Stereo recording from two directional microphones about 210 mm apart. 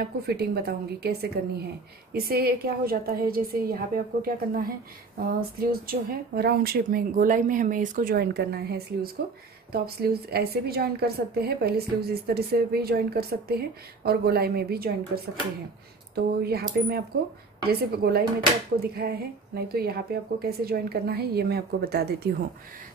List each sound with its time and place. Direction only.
0.0 s a woman's voice: 50° right (ahead or behind)
16.4 s a woman's voice: 50° right (ahead or behind)